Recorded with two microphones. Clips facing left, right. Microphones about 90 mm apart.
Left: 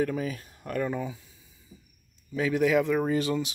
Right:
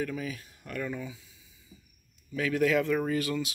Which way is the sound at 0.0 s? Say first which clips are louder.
Left 5 dB; 40° left (ahead or behind).